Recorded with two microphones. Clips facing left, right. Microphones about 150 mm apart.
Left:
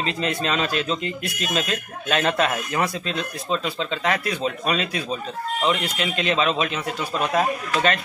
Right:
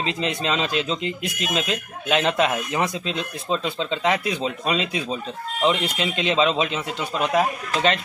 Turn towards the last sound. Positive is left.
turn(degrees=-10)  # may be behind; listen again after turning